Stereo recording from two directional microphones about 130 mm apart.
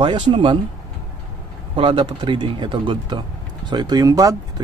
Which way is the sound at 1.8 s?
40° right (ahead or behind).